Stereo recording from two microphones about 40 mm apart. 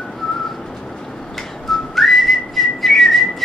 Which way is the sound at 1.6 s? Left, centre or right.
Centre.